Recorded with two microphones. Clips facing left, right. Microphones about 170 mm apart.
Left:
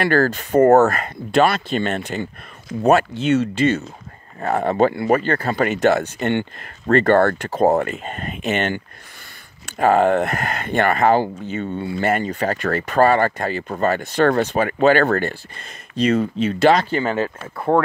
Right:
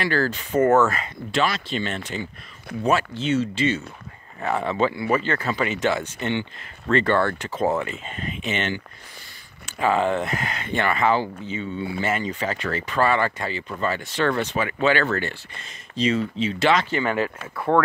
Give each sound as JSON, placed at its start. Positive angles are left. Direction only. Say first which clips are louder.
{"t": 0.0, "sound": "speech", "louder": "left 6 dB", "side_deg": 50}
{"t": 7.9, "sound": "speech", "louder": "left 3 dB", "side_deg": 55}